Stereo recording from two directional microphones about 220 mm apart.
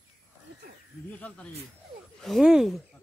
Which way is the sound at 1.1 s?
5° left (ahead or behind).